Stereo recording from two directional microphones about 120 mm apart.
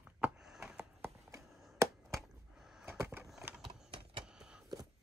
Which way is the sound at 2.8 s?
20° right (ahead or behind).